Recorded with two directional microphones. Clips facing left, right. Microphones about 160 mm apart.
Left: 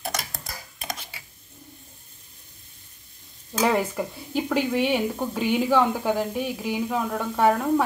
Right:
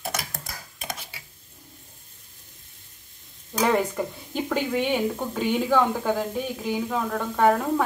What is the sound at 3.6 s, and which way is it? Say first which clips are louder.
Speech: even; 5° left (ahead or behind).